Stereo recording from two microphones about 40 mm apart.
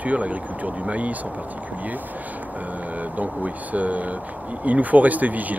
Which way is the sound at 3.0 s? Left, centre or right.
Right.